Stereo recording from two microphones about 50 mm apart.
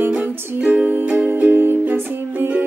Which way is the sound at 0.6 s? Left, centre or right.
Right.